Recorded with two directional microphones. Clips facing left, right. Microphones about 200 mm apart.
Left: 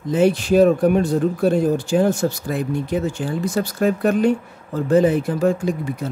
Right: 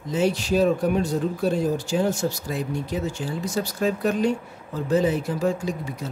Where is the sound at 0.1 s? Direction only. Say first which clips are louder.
Left 6 dB; 55° left (ahead or behind).